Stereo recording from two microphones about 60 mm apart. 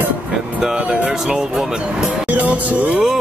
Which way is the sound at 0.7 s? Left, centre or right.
Centre.